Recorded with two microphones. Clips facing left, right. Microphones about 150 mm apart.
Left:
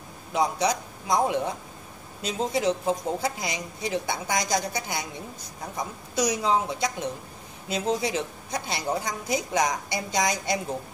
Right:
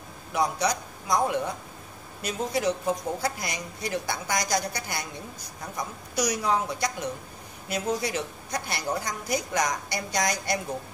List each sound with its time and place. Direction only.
0.3 s a woman's voice: 20° left (ahead or behind)